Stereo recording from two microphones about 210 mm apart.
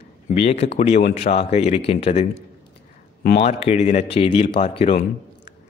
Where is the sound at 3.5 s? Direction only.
30° left (ahead or behind).